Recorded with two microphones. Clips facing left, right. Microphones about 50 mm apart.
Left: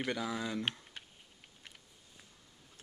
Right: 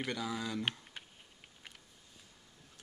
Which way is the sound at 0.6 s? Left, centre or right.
Centre.